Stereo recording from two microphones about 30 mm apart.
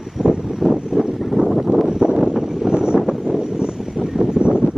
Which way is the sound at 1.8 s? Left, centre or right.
Right.